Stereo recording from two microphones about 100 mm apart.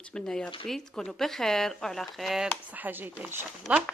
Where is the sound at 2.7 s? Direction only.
20° right (ahead or behind).